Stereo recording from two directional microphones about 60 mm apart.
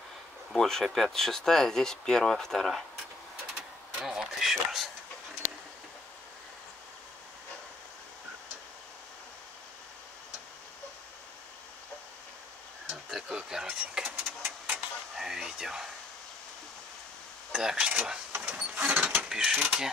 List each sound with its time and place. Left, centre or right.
0.5 s speech: centre
4.0 s speech: centre
13.1 s speech: centre
14.1 s vehicle: right
15.1 s speech: centre
17.5 s speech: centre
18.5 s mechanisms: right
19.2 s mechanisms: centre
19.6 s speech: centre